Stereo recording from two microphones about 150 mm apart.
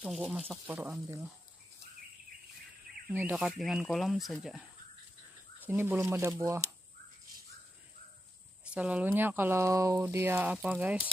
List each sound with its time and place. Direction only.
0.3 s speech: centre (ahead or behind)
0.7 s speech: 15° right (ahead or behind)
3.1 s speech: 10° right (ahead or behind)
5.6 s speech: 15° right (ahead or behind)
8.6 s speech: 10° right (ahead or behind)